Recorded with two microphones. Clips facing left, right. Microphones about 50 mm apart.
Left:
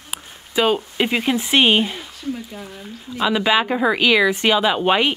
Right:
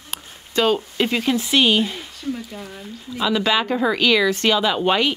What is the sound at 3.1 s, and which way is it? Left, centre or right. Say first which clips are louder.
A woman's voice: left 2 dB; centre.